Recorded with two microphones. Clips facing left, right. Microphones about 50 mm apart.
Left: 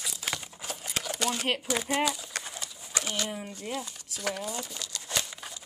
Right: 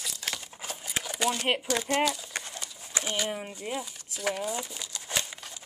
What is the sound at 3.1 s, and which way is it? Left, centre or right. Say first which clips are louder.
Speech: right 2 dB; centre.